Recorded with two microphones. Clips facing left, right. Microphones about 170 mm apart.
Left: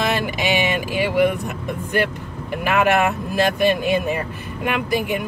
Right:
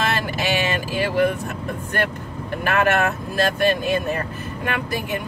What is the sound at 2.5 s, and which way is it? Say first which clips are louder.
Speech: left 2 dB; 10° left (ahead or behind).